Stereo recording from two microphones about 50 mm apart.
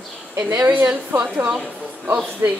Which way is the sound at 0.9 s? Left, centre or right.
Right.